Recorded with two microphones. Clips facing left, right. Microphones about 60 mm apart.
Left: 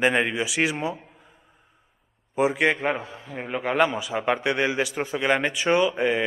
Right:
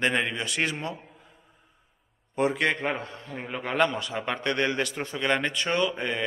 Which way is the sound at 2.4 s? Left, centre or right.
Centre.